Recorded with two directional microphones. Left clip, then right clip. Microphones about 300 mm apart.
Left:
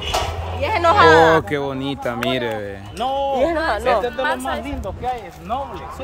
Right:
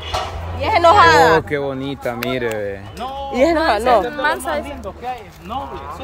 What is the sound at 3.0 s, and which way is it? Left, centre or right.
Speech, left.